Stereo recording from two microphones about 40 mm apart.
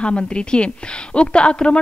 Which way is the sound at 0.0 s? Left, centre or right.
Left.